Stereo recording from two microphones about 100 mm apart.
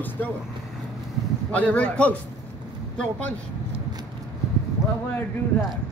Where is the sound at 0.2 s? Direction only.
20° left (ahead or behind).